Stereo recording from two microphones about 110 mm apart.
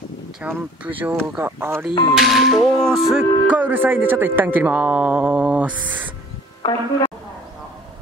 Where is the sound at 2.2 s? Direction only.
Centre (ahead or behind).